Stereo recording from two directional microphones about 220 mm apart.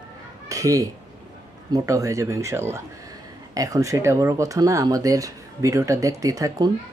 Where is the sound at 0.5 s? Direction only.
15° right (ahead or behind).